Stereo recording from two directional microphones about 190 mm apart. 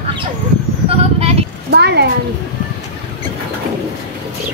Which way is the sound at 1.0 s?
35° right (ahead or behind).